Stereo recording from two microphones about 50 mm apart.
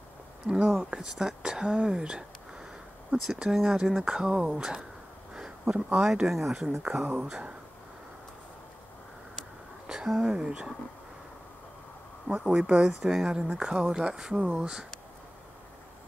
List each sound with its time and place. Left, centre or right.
0.5 s speech: centre
5.3 s a sound: centre
6.2 s speech: centre
6.8 s speech: right
9.8 s a sound: centre
10.3 s speech: centre
12.3 s speech: right